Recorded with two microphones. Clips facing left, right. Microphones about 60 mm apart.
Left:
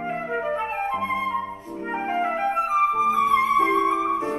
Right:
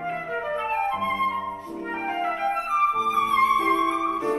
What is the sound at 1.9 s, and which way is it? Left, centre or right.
Music, centre.